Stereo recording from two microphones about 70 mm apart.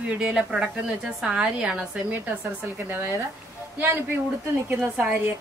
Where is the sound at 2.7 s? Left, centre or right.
Right.